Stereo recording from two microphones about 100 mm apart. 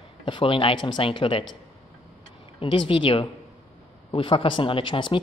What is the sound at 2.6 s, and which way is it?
Speech, 60° left (ahead or behind).